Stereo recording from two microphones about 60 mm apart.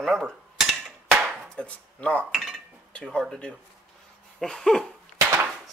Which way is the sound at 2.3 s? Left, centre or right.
Centre.